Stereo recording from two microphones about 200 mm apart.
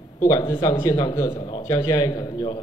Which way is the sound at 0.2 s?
20° left (ahead or behind).